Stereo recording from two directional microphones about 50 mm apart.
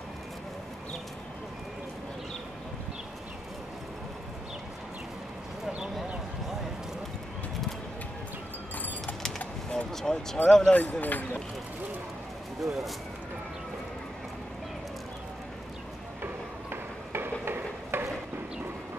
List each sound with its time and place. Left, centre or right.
9.7 s speech: centre
11.0 s speech: left
12.6 s speech: centre
16.7 s a sound: right